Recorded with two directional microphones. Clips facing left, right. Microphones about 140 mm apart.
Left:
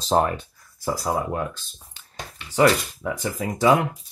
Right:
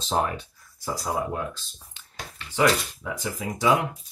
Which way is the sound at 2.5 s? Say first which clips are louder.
Left 4 dB; 45° left (ahead or behind).